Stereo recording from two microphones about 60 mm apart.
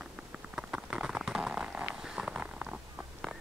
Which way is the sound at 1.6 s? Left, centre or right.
Right.